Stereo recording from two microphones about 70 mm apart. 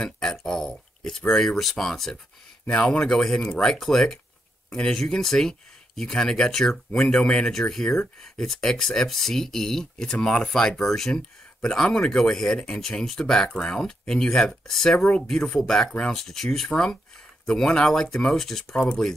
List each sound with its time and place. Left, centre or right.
0.0 s speech: centre
12.5 s speech: centre
12.8 s speech: centre